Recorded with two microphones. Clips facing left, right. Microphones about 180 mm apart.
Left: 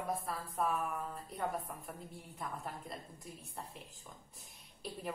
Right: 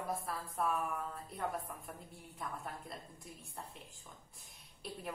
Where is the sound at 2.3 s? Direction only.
Centre (ahead or behind).